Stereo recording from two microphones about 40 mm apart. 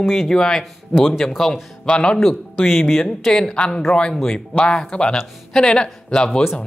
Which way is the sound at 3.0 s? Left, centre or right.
Centre.